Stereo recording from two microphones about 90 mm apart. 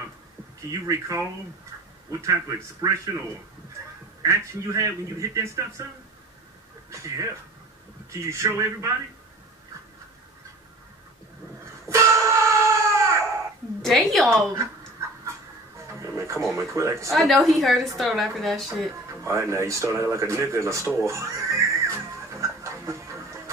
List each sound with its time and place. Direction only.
0.7 s a man's voice: 35° right (ahead or behind)
4.2 s a man's voice: 35° right (ahead or behind)
6.9 s a man's voice: 35° right (ahead or behind)
11.9 s a sound: 35° right (ahead or behind)
13.8 s a woman's voice: centre (ahead or behind)
14.3 s a man's voice: 30° right (ahead or behind)
15.9 s music: 35° right (ahead or behind)
16.5 s a man's voice: 35° right (ahead or behind)
17.1 s a woman's voice: centre (ahead or behind)
19.2 s a man's voice: 30° right (ahead or behind)
21.0 s music: 35° right (ahead or behind)